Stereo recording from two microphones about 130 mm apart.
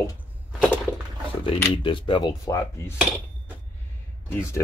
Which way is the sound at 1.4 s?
45° left (ahead or behind).